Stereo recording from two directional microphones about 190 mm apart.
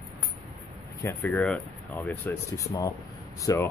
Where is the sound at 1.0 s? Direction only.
10° left (ahead or behind).